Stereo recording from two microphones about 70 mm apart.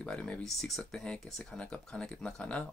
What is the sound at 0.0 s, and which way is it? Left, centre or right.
Speech, centre.